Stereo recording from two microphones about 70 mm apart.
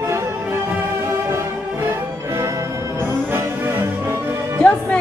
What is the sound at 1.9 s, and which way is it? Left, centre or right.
Music, right.